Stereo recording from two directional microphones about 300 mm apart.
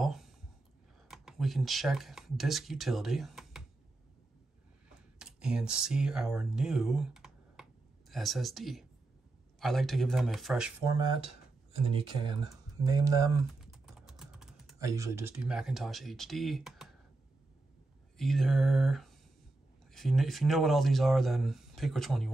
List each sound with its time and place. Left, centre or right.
0.0 s a sound: centre
1.0 s speech: centre
5.2 s speech: centre
18.1 s speech: centre